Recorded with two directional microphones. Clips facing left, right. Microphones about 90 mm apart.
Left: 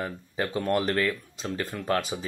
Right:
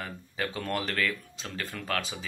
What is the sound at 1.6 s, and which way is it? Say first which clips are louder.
Speech: left 5 dB; 15° left (ahead or behind).